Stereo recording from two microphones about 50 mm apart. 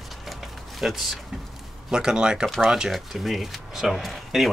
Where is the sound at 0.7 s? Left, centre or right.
Centre.